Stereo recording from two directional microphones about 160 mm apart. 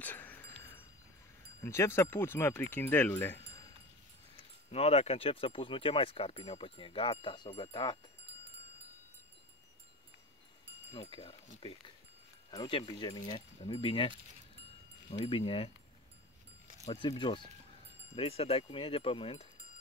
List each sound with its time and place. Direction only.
0.0 s wind chime: 10° left (ahead or behind)
1.6 s speech: 15° left (ahead or behind)
4.6 s speech: 40° left (ahead or behind)
10.9 s speech: 40° left (ahead or behind)
12.4 s speech: 30° left (ahead or behind)
16.8 s speech: 35° left (ahead or behind)